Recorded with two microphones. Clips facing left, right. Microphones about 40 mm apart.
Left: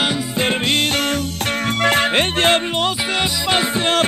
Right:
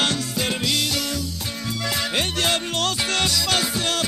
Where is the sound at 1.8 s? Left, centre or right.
Left.